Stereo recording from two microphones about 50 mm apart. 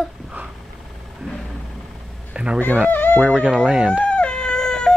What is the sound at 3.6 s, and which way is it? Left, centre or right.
Speech, centre.